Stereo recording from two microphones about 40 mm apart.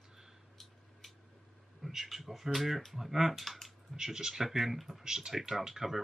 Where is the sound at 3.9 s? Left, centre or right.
Centre.